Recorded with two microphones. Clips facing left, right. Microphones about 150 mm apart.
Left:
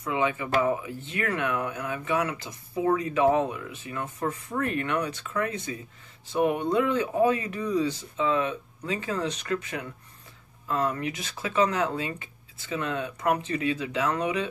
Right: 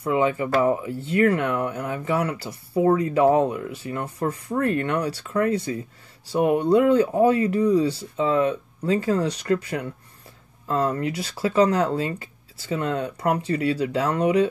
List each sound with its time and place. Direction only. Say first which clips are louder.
0.1 s speech: right 5 dB; 35° right (ahead or behind)